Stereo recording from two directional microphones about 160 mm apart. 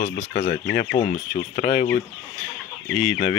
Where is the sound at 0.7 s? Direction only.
90° left.